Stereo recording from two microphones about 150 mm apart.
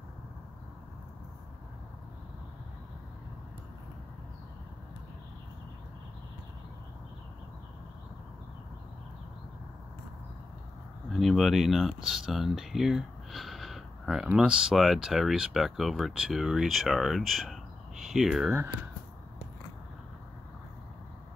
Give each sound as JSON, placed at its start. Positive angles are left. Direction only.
{"t": 11.1, "sound": "speech", "side_deg": 0}